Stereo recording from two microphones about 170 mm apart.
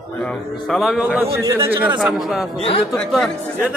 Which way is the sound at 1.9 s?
Centre (ahead or behind).